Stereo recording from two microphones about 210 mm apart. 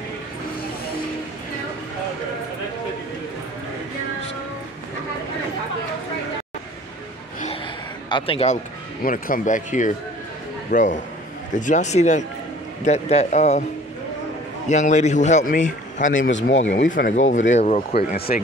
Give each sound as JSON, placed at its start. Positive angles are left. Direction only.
{"t": 8.1, "sound": "a man's voice", "side_deg": 25}
{"t": 9.0, "sound": "a man's voice", "side_deg": 40}
{"t": 14.7, "sound": "a man's voice", "side_deg": 35}
{"t": 16.2, "sound": "speech", "side_deg": 60}
{"t": 16.9, "sound": "a man's voice", "side_deg": 40}
{"t": 17.9, "sound": "speech", "side_deg": 45}